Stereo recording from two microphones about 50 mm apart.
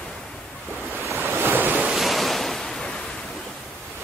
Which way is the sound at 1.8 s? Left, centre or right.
Centre.